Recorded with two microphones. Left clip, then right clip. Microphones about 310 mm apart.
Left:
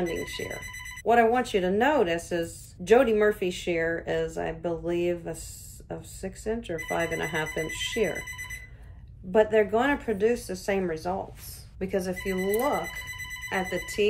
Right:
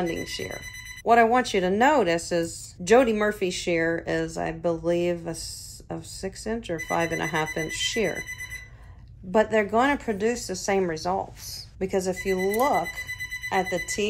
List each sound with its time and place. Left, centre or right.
0.1 s speech: right
9.3 s speech: right
13.5 s speech: centre